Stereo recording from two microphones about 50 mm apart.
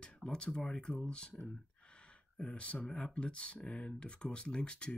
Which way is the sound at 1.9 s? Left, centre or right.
Left.